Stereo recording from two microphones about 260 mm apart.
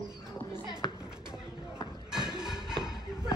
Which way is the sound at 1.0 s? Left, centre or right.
Centre.